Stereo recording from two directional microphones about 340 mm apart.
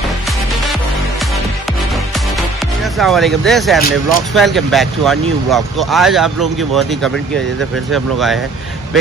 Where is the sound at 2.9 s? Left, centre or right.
Centre.